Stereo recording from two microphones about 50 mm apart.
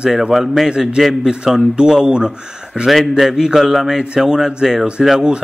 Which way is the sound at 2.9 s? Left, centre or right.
Centre.